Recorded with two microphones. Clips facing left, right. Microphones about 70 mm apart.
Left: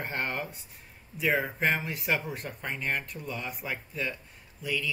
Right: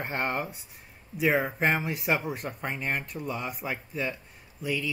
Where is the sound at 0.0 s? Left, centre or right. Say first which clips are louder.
Right 3 dB; centre.